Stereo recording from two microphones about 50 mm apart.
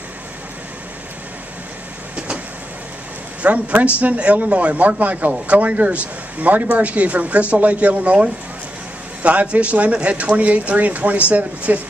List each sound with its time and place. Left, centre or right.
2.1 s vehicle: right
3.4 s speech: right